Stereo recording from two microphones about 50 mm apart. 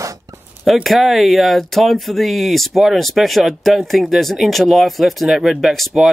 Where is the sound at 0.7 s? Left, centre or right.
Centre.